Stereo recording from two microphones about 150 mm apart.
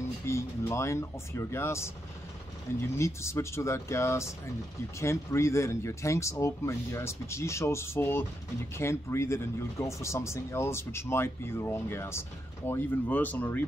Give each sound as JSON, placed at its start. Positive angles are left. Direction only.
{"t": 0.3, "sound": "speech", "side_deg": 20}
{"t": 3.0, "sound": "speech", "side_deg": 20}